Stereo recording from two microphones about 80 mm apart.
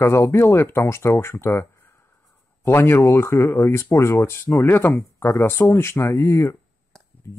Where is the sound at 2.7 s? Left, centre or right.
Left.